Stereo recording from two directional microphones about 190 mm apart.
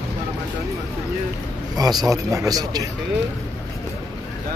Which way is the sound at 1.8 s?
20° right (ahead or behind).